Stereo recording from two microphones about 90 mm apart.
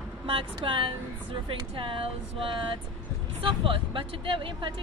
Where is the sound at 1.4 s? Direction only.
85° right.